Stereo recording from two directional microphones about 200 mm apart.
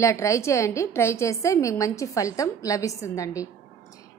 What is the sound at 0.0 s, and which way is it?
A woman's voice, 15° left (ahead or behind).